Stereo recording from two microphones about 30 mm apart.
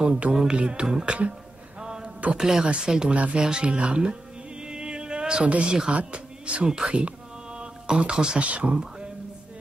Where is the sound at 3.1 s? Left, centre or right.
Right.